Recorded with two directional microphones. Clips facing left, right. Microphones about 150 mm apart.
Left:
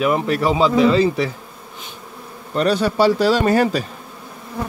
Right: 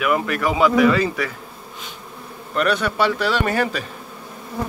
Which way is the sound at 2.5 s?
30° left (ahead or behind).